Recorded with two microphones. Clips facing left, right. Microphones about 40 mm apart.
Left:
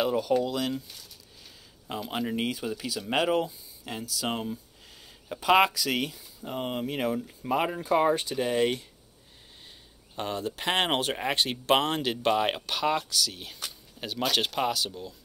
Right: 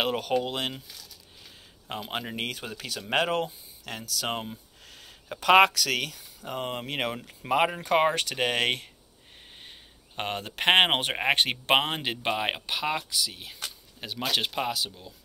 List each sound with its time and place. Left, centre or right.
0.0 s speech: right
2.0 s speech: right
9.6 s speech: right
11.8 s speech: right